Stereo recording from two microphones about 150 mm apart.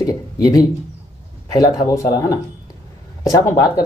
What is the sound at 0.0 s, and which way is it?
Speech, 25° left (ahead or behind).